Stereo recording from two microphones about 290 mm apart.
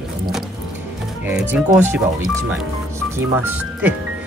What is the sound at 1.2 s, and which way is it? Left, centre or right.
Speech, centre.